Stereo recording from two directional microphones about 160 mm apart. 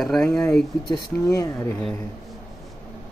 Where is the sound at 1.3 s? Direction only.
20° left (ahead or behind).